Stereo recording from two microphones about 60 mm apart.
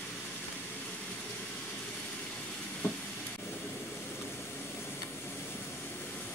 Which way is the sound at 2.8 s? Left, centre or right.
Left.